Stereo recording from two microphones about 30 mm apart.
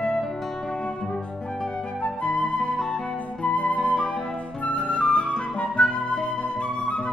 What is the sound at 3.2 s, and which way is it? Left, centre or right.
Flute, left.